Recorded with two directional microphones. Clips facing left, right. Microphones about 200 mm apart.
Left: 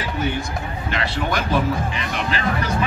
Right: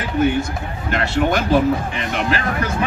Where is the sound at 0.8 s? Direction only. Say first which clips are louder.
Right 7 dB; 50° right (ahead or behind).